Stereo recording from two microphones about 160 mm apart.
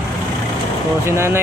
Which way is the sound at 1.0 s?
15° right (ahead or behind).